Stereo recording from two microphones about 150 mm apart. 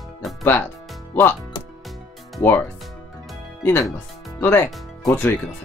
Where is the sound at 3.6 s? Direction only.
15° left (ahead or behind).